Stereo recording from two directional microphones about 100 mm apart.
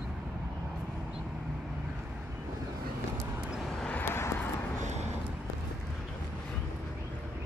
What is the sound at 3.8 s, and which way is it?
Vehicle, 20° left (ahead or behind).